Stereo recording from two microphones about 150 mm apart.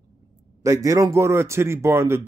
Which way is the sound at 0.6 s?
20° right (ahead or behind).